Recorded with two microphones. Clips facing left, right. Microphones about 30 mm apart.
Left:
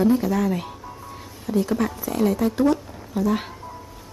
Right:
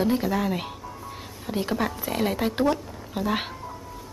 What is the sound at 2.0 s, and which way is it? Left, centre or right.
Speech, right.